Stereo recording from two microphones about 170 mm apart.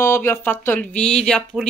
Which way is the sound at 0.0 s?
15° left (ahead or behind).